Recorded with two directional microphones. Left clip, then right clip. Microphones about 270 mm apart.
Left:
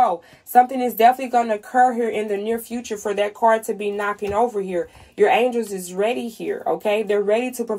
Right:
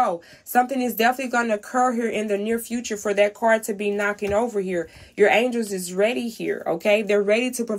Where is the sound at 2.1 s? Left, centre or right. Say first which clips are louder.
Left 1 dB; centre.